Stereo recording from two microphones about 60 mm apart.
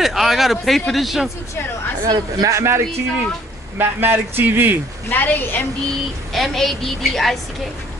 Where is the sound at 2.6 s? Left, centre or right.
Right.